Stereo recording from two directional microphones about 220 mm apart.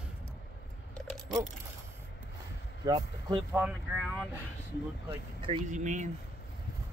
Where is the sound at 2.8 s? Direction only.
15° right (ahead or behind).